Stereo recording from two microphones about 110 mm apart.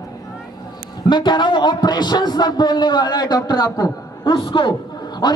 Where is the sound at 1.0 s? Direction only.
45° left (ahead or behind).